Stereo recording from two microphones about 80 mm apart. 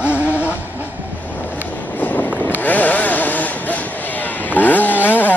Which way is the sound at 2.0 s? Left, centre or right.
Left.